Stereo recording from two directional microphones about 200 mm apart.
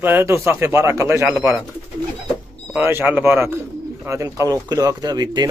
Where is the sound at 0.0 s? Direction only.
10° right (ahead or behind).